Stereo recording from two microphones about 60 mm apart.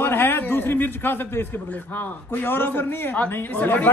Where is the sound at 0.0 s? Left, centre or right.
Left.